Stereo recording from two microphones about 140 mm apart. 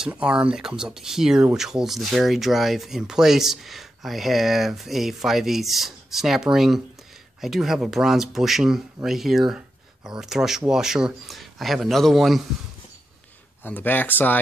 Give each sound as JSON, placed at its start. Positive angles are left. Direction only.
{"t": 0.1, "sound": "speech", "side_deg": -5}
{"t": 13.7, "sound": "speech", "side_deg": 15}